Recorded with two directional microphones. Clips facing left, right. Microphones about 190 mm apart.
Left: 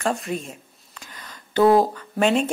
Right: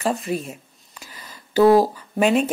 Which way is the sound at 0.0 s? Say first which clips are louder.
Right 2 dB; centre (ahead or behind).